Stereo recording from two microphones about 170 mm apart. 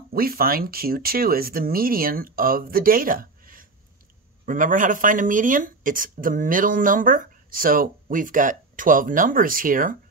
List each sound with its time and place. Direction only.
0.1 s speech: 60° right (ahead or behind)